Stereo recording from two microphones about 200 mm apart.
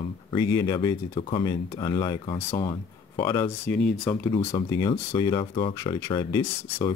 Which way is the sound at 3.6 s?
5° left (ahead or behind).